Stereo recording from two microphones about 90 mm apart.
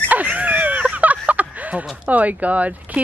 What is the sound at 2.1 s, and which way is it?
Speech, 15° right (ahead or behind).